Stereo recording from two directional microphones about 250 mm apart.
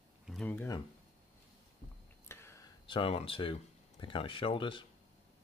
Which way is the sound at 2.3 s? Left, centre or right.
Centre.